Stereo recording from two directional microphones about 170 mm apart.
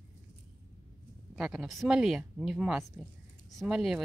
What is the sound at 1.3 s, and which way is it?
Speech, centre (ahead or behind).